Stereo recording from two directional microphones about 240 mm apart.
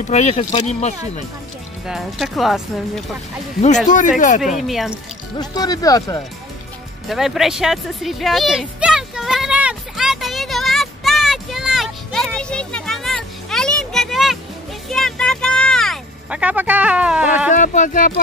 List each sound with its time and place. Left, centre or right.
0.1 s speech: left
1.9 s speech: centre
3.6 s speech: left
4.6 s speech: centre
5.4 s speech: centre
7.1 s a sound: centre
17.6 s speech: left